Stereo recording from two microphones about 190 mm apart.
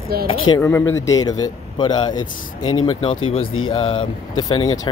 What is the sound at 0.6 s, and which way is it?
Speech, 10° left (ahead or behind).